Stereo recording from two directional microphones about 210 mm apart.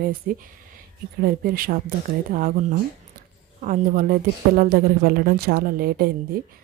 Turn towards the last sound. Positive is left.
turn(degrees=-45)  # may be behind; listen again after turning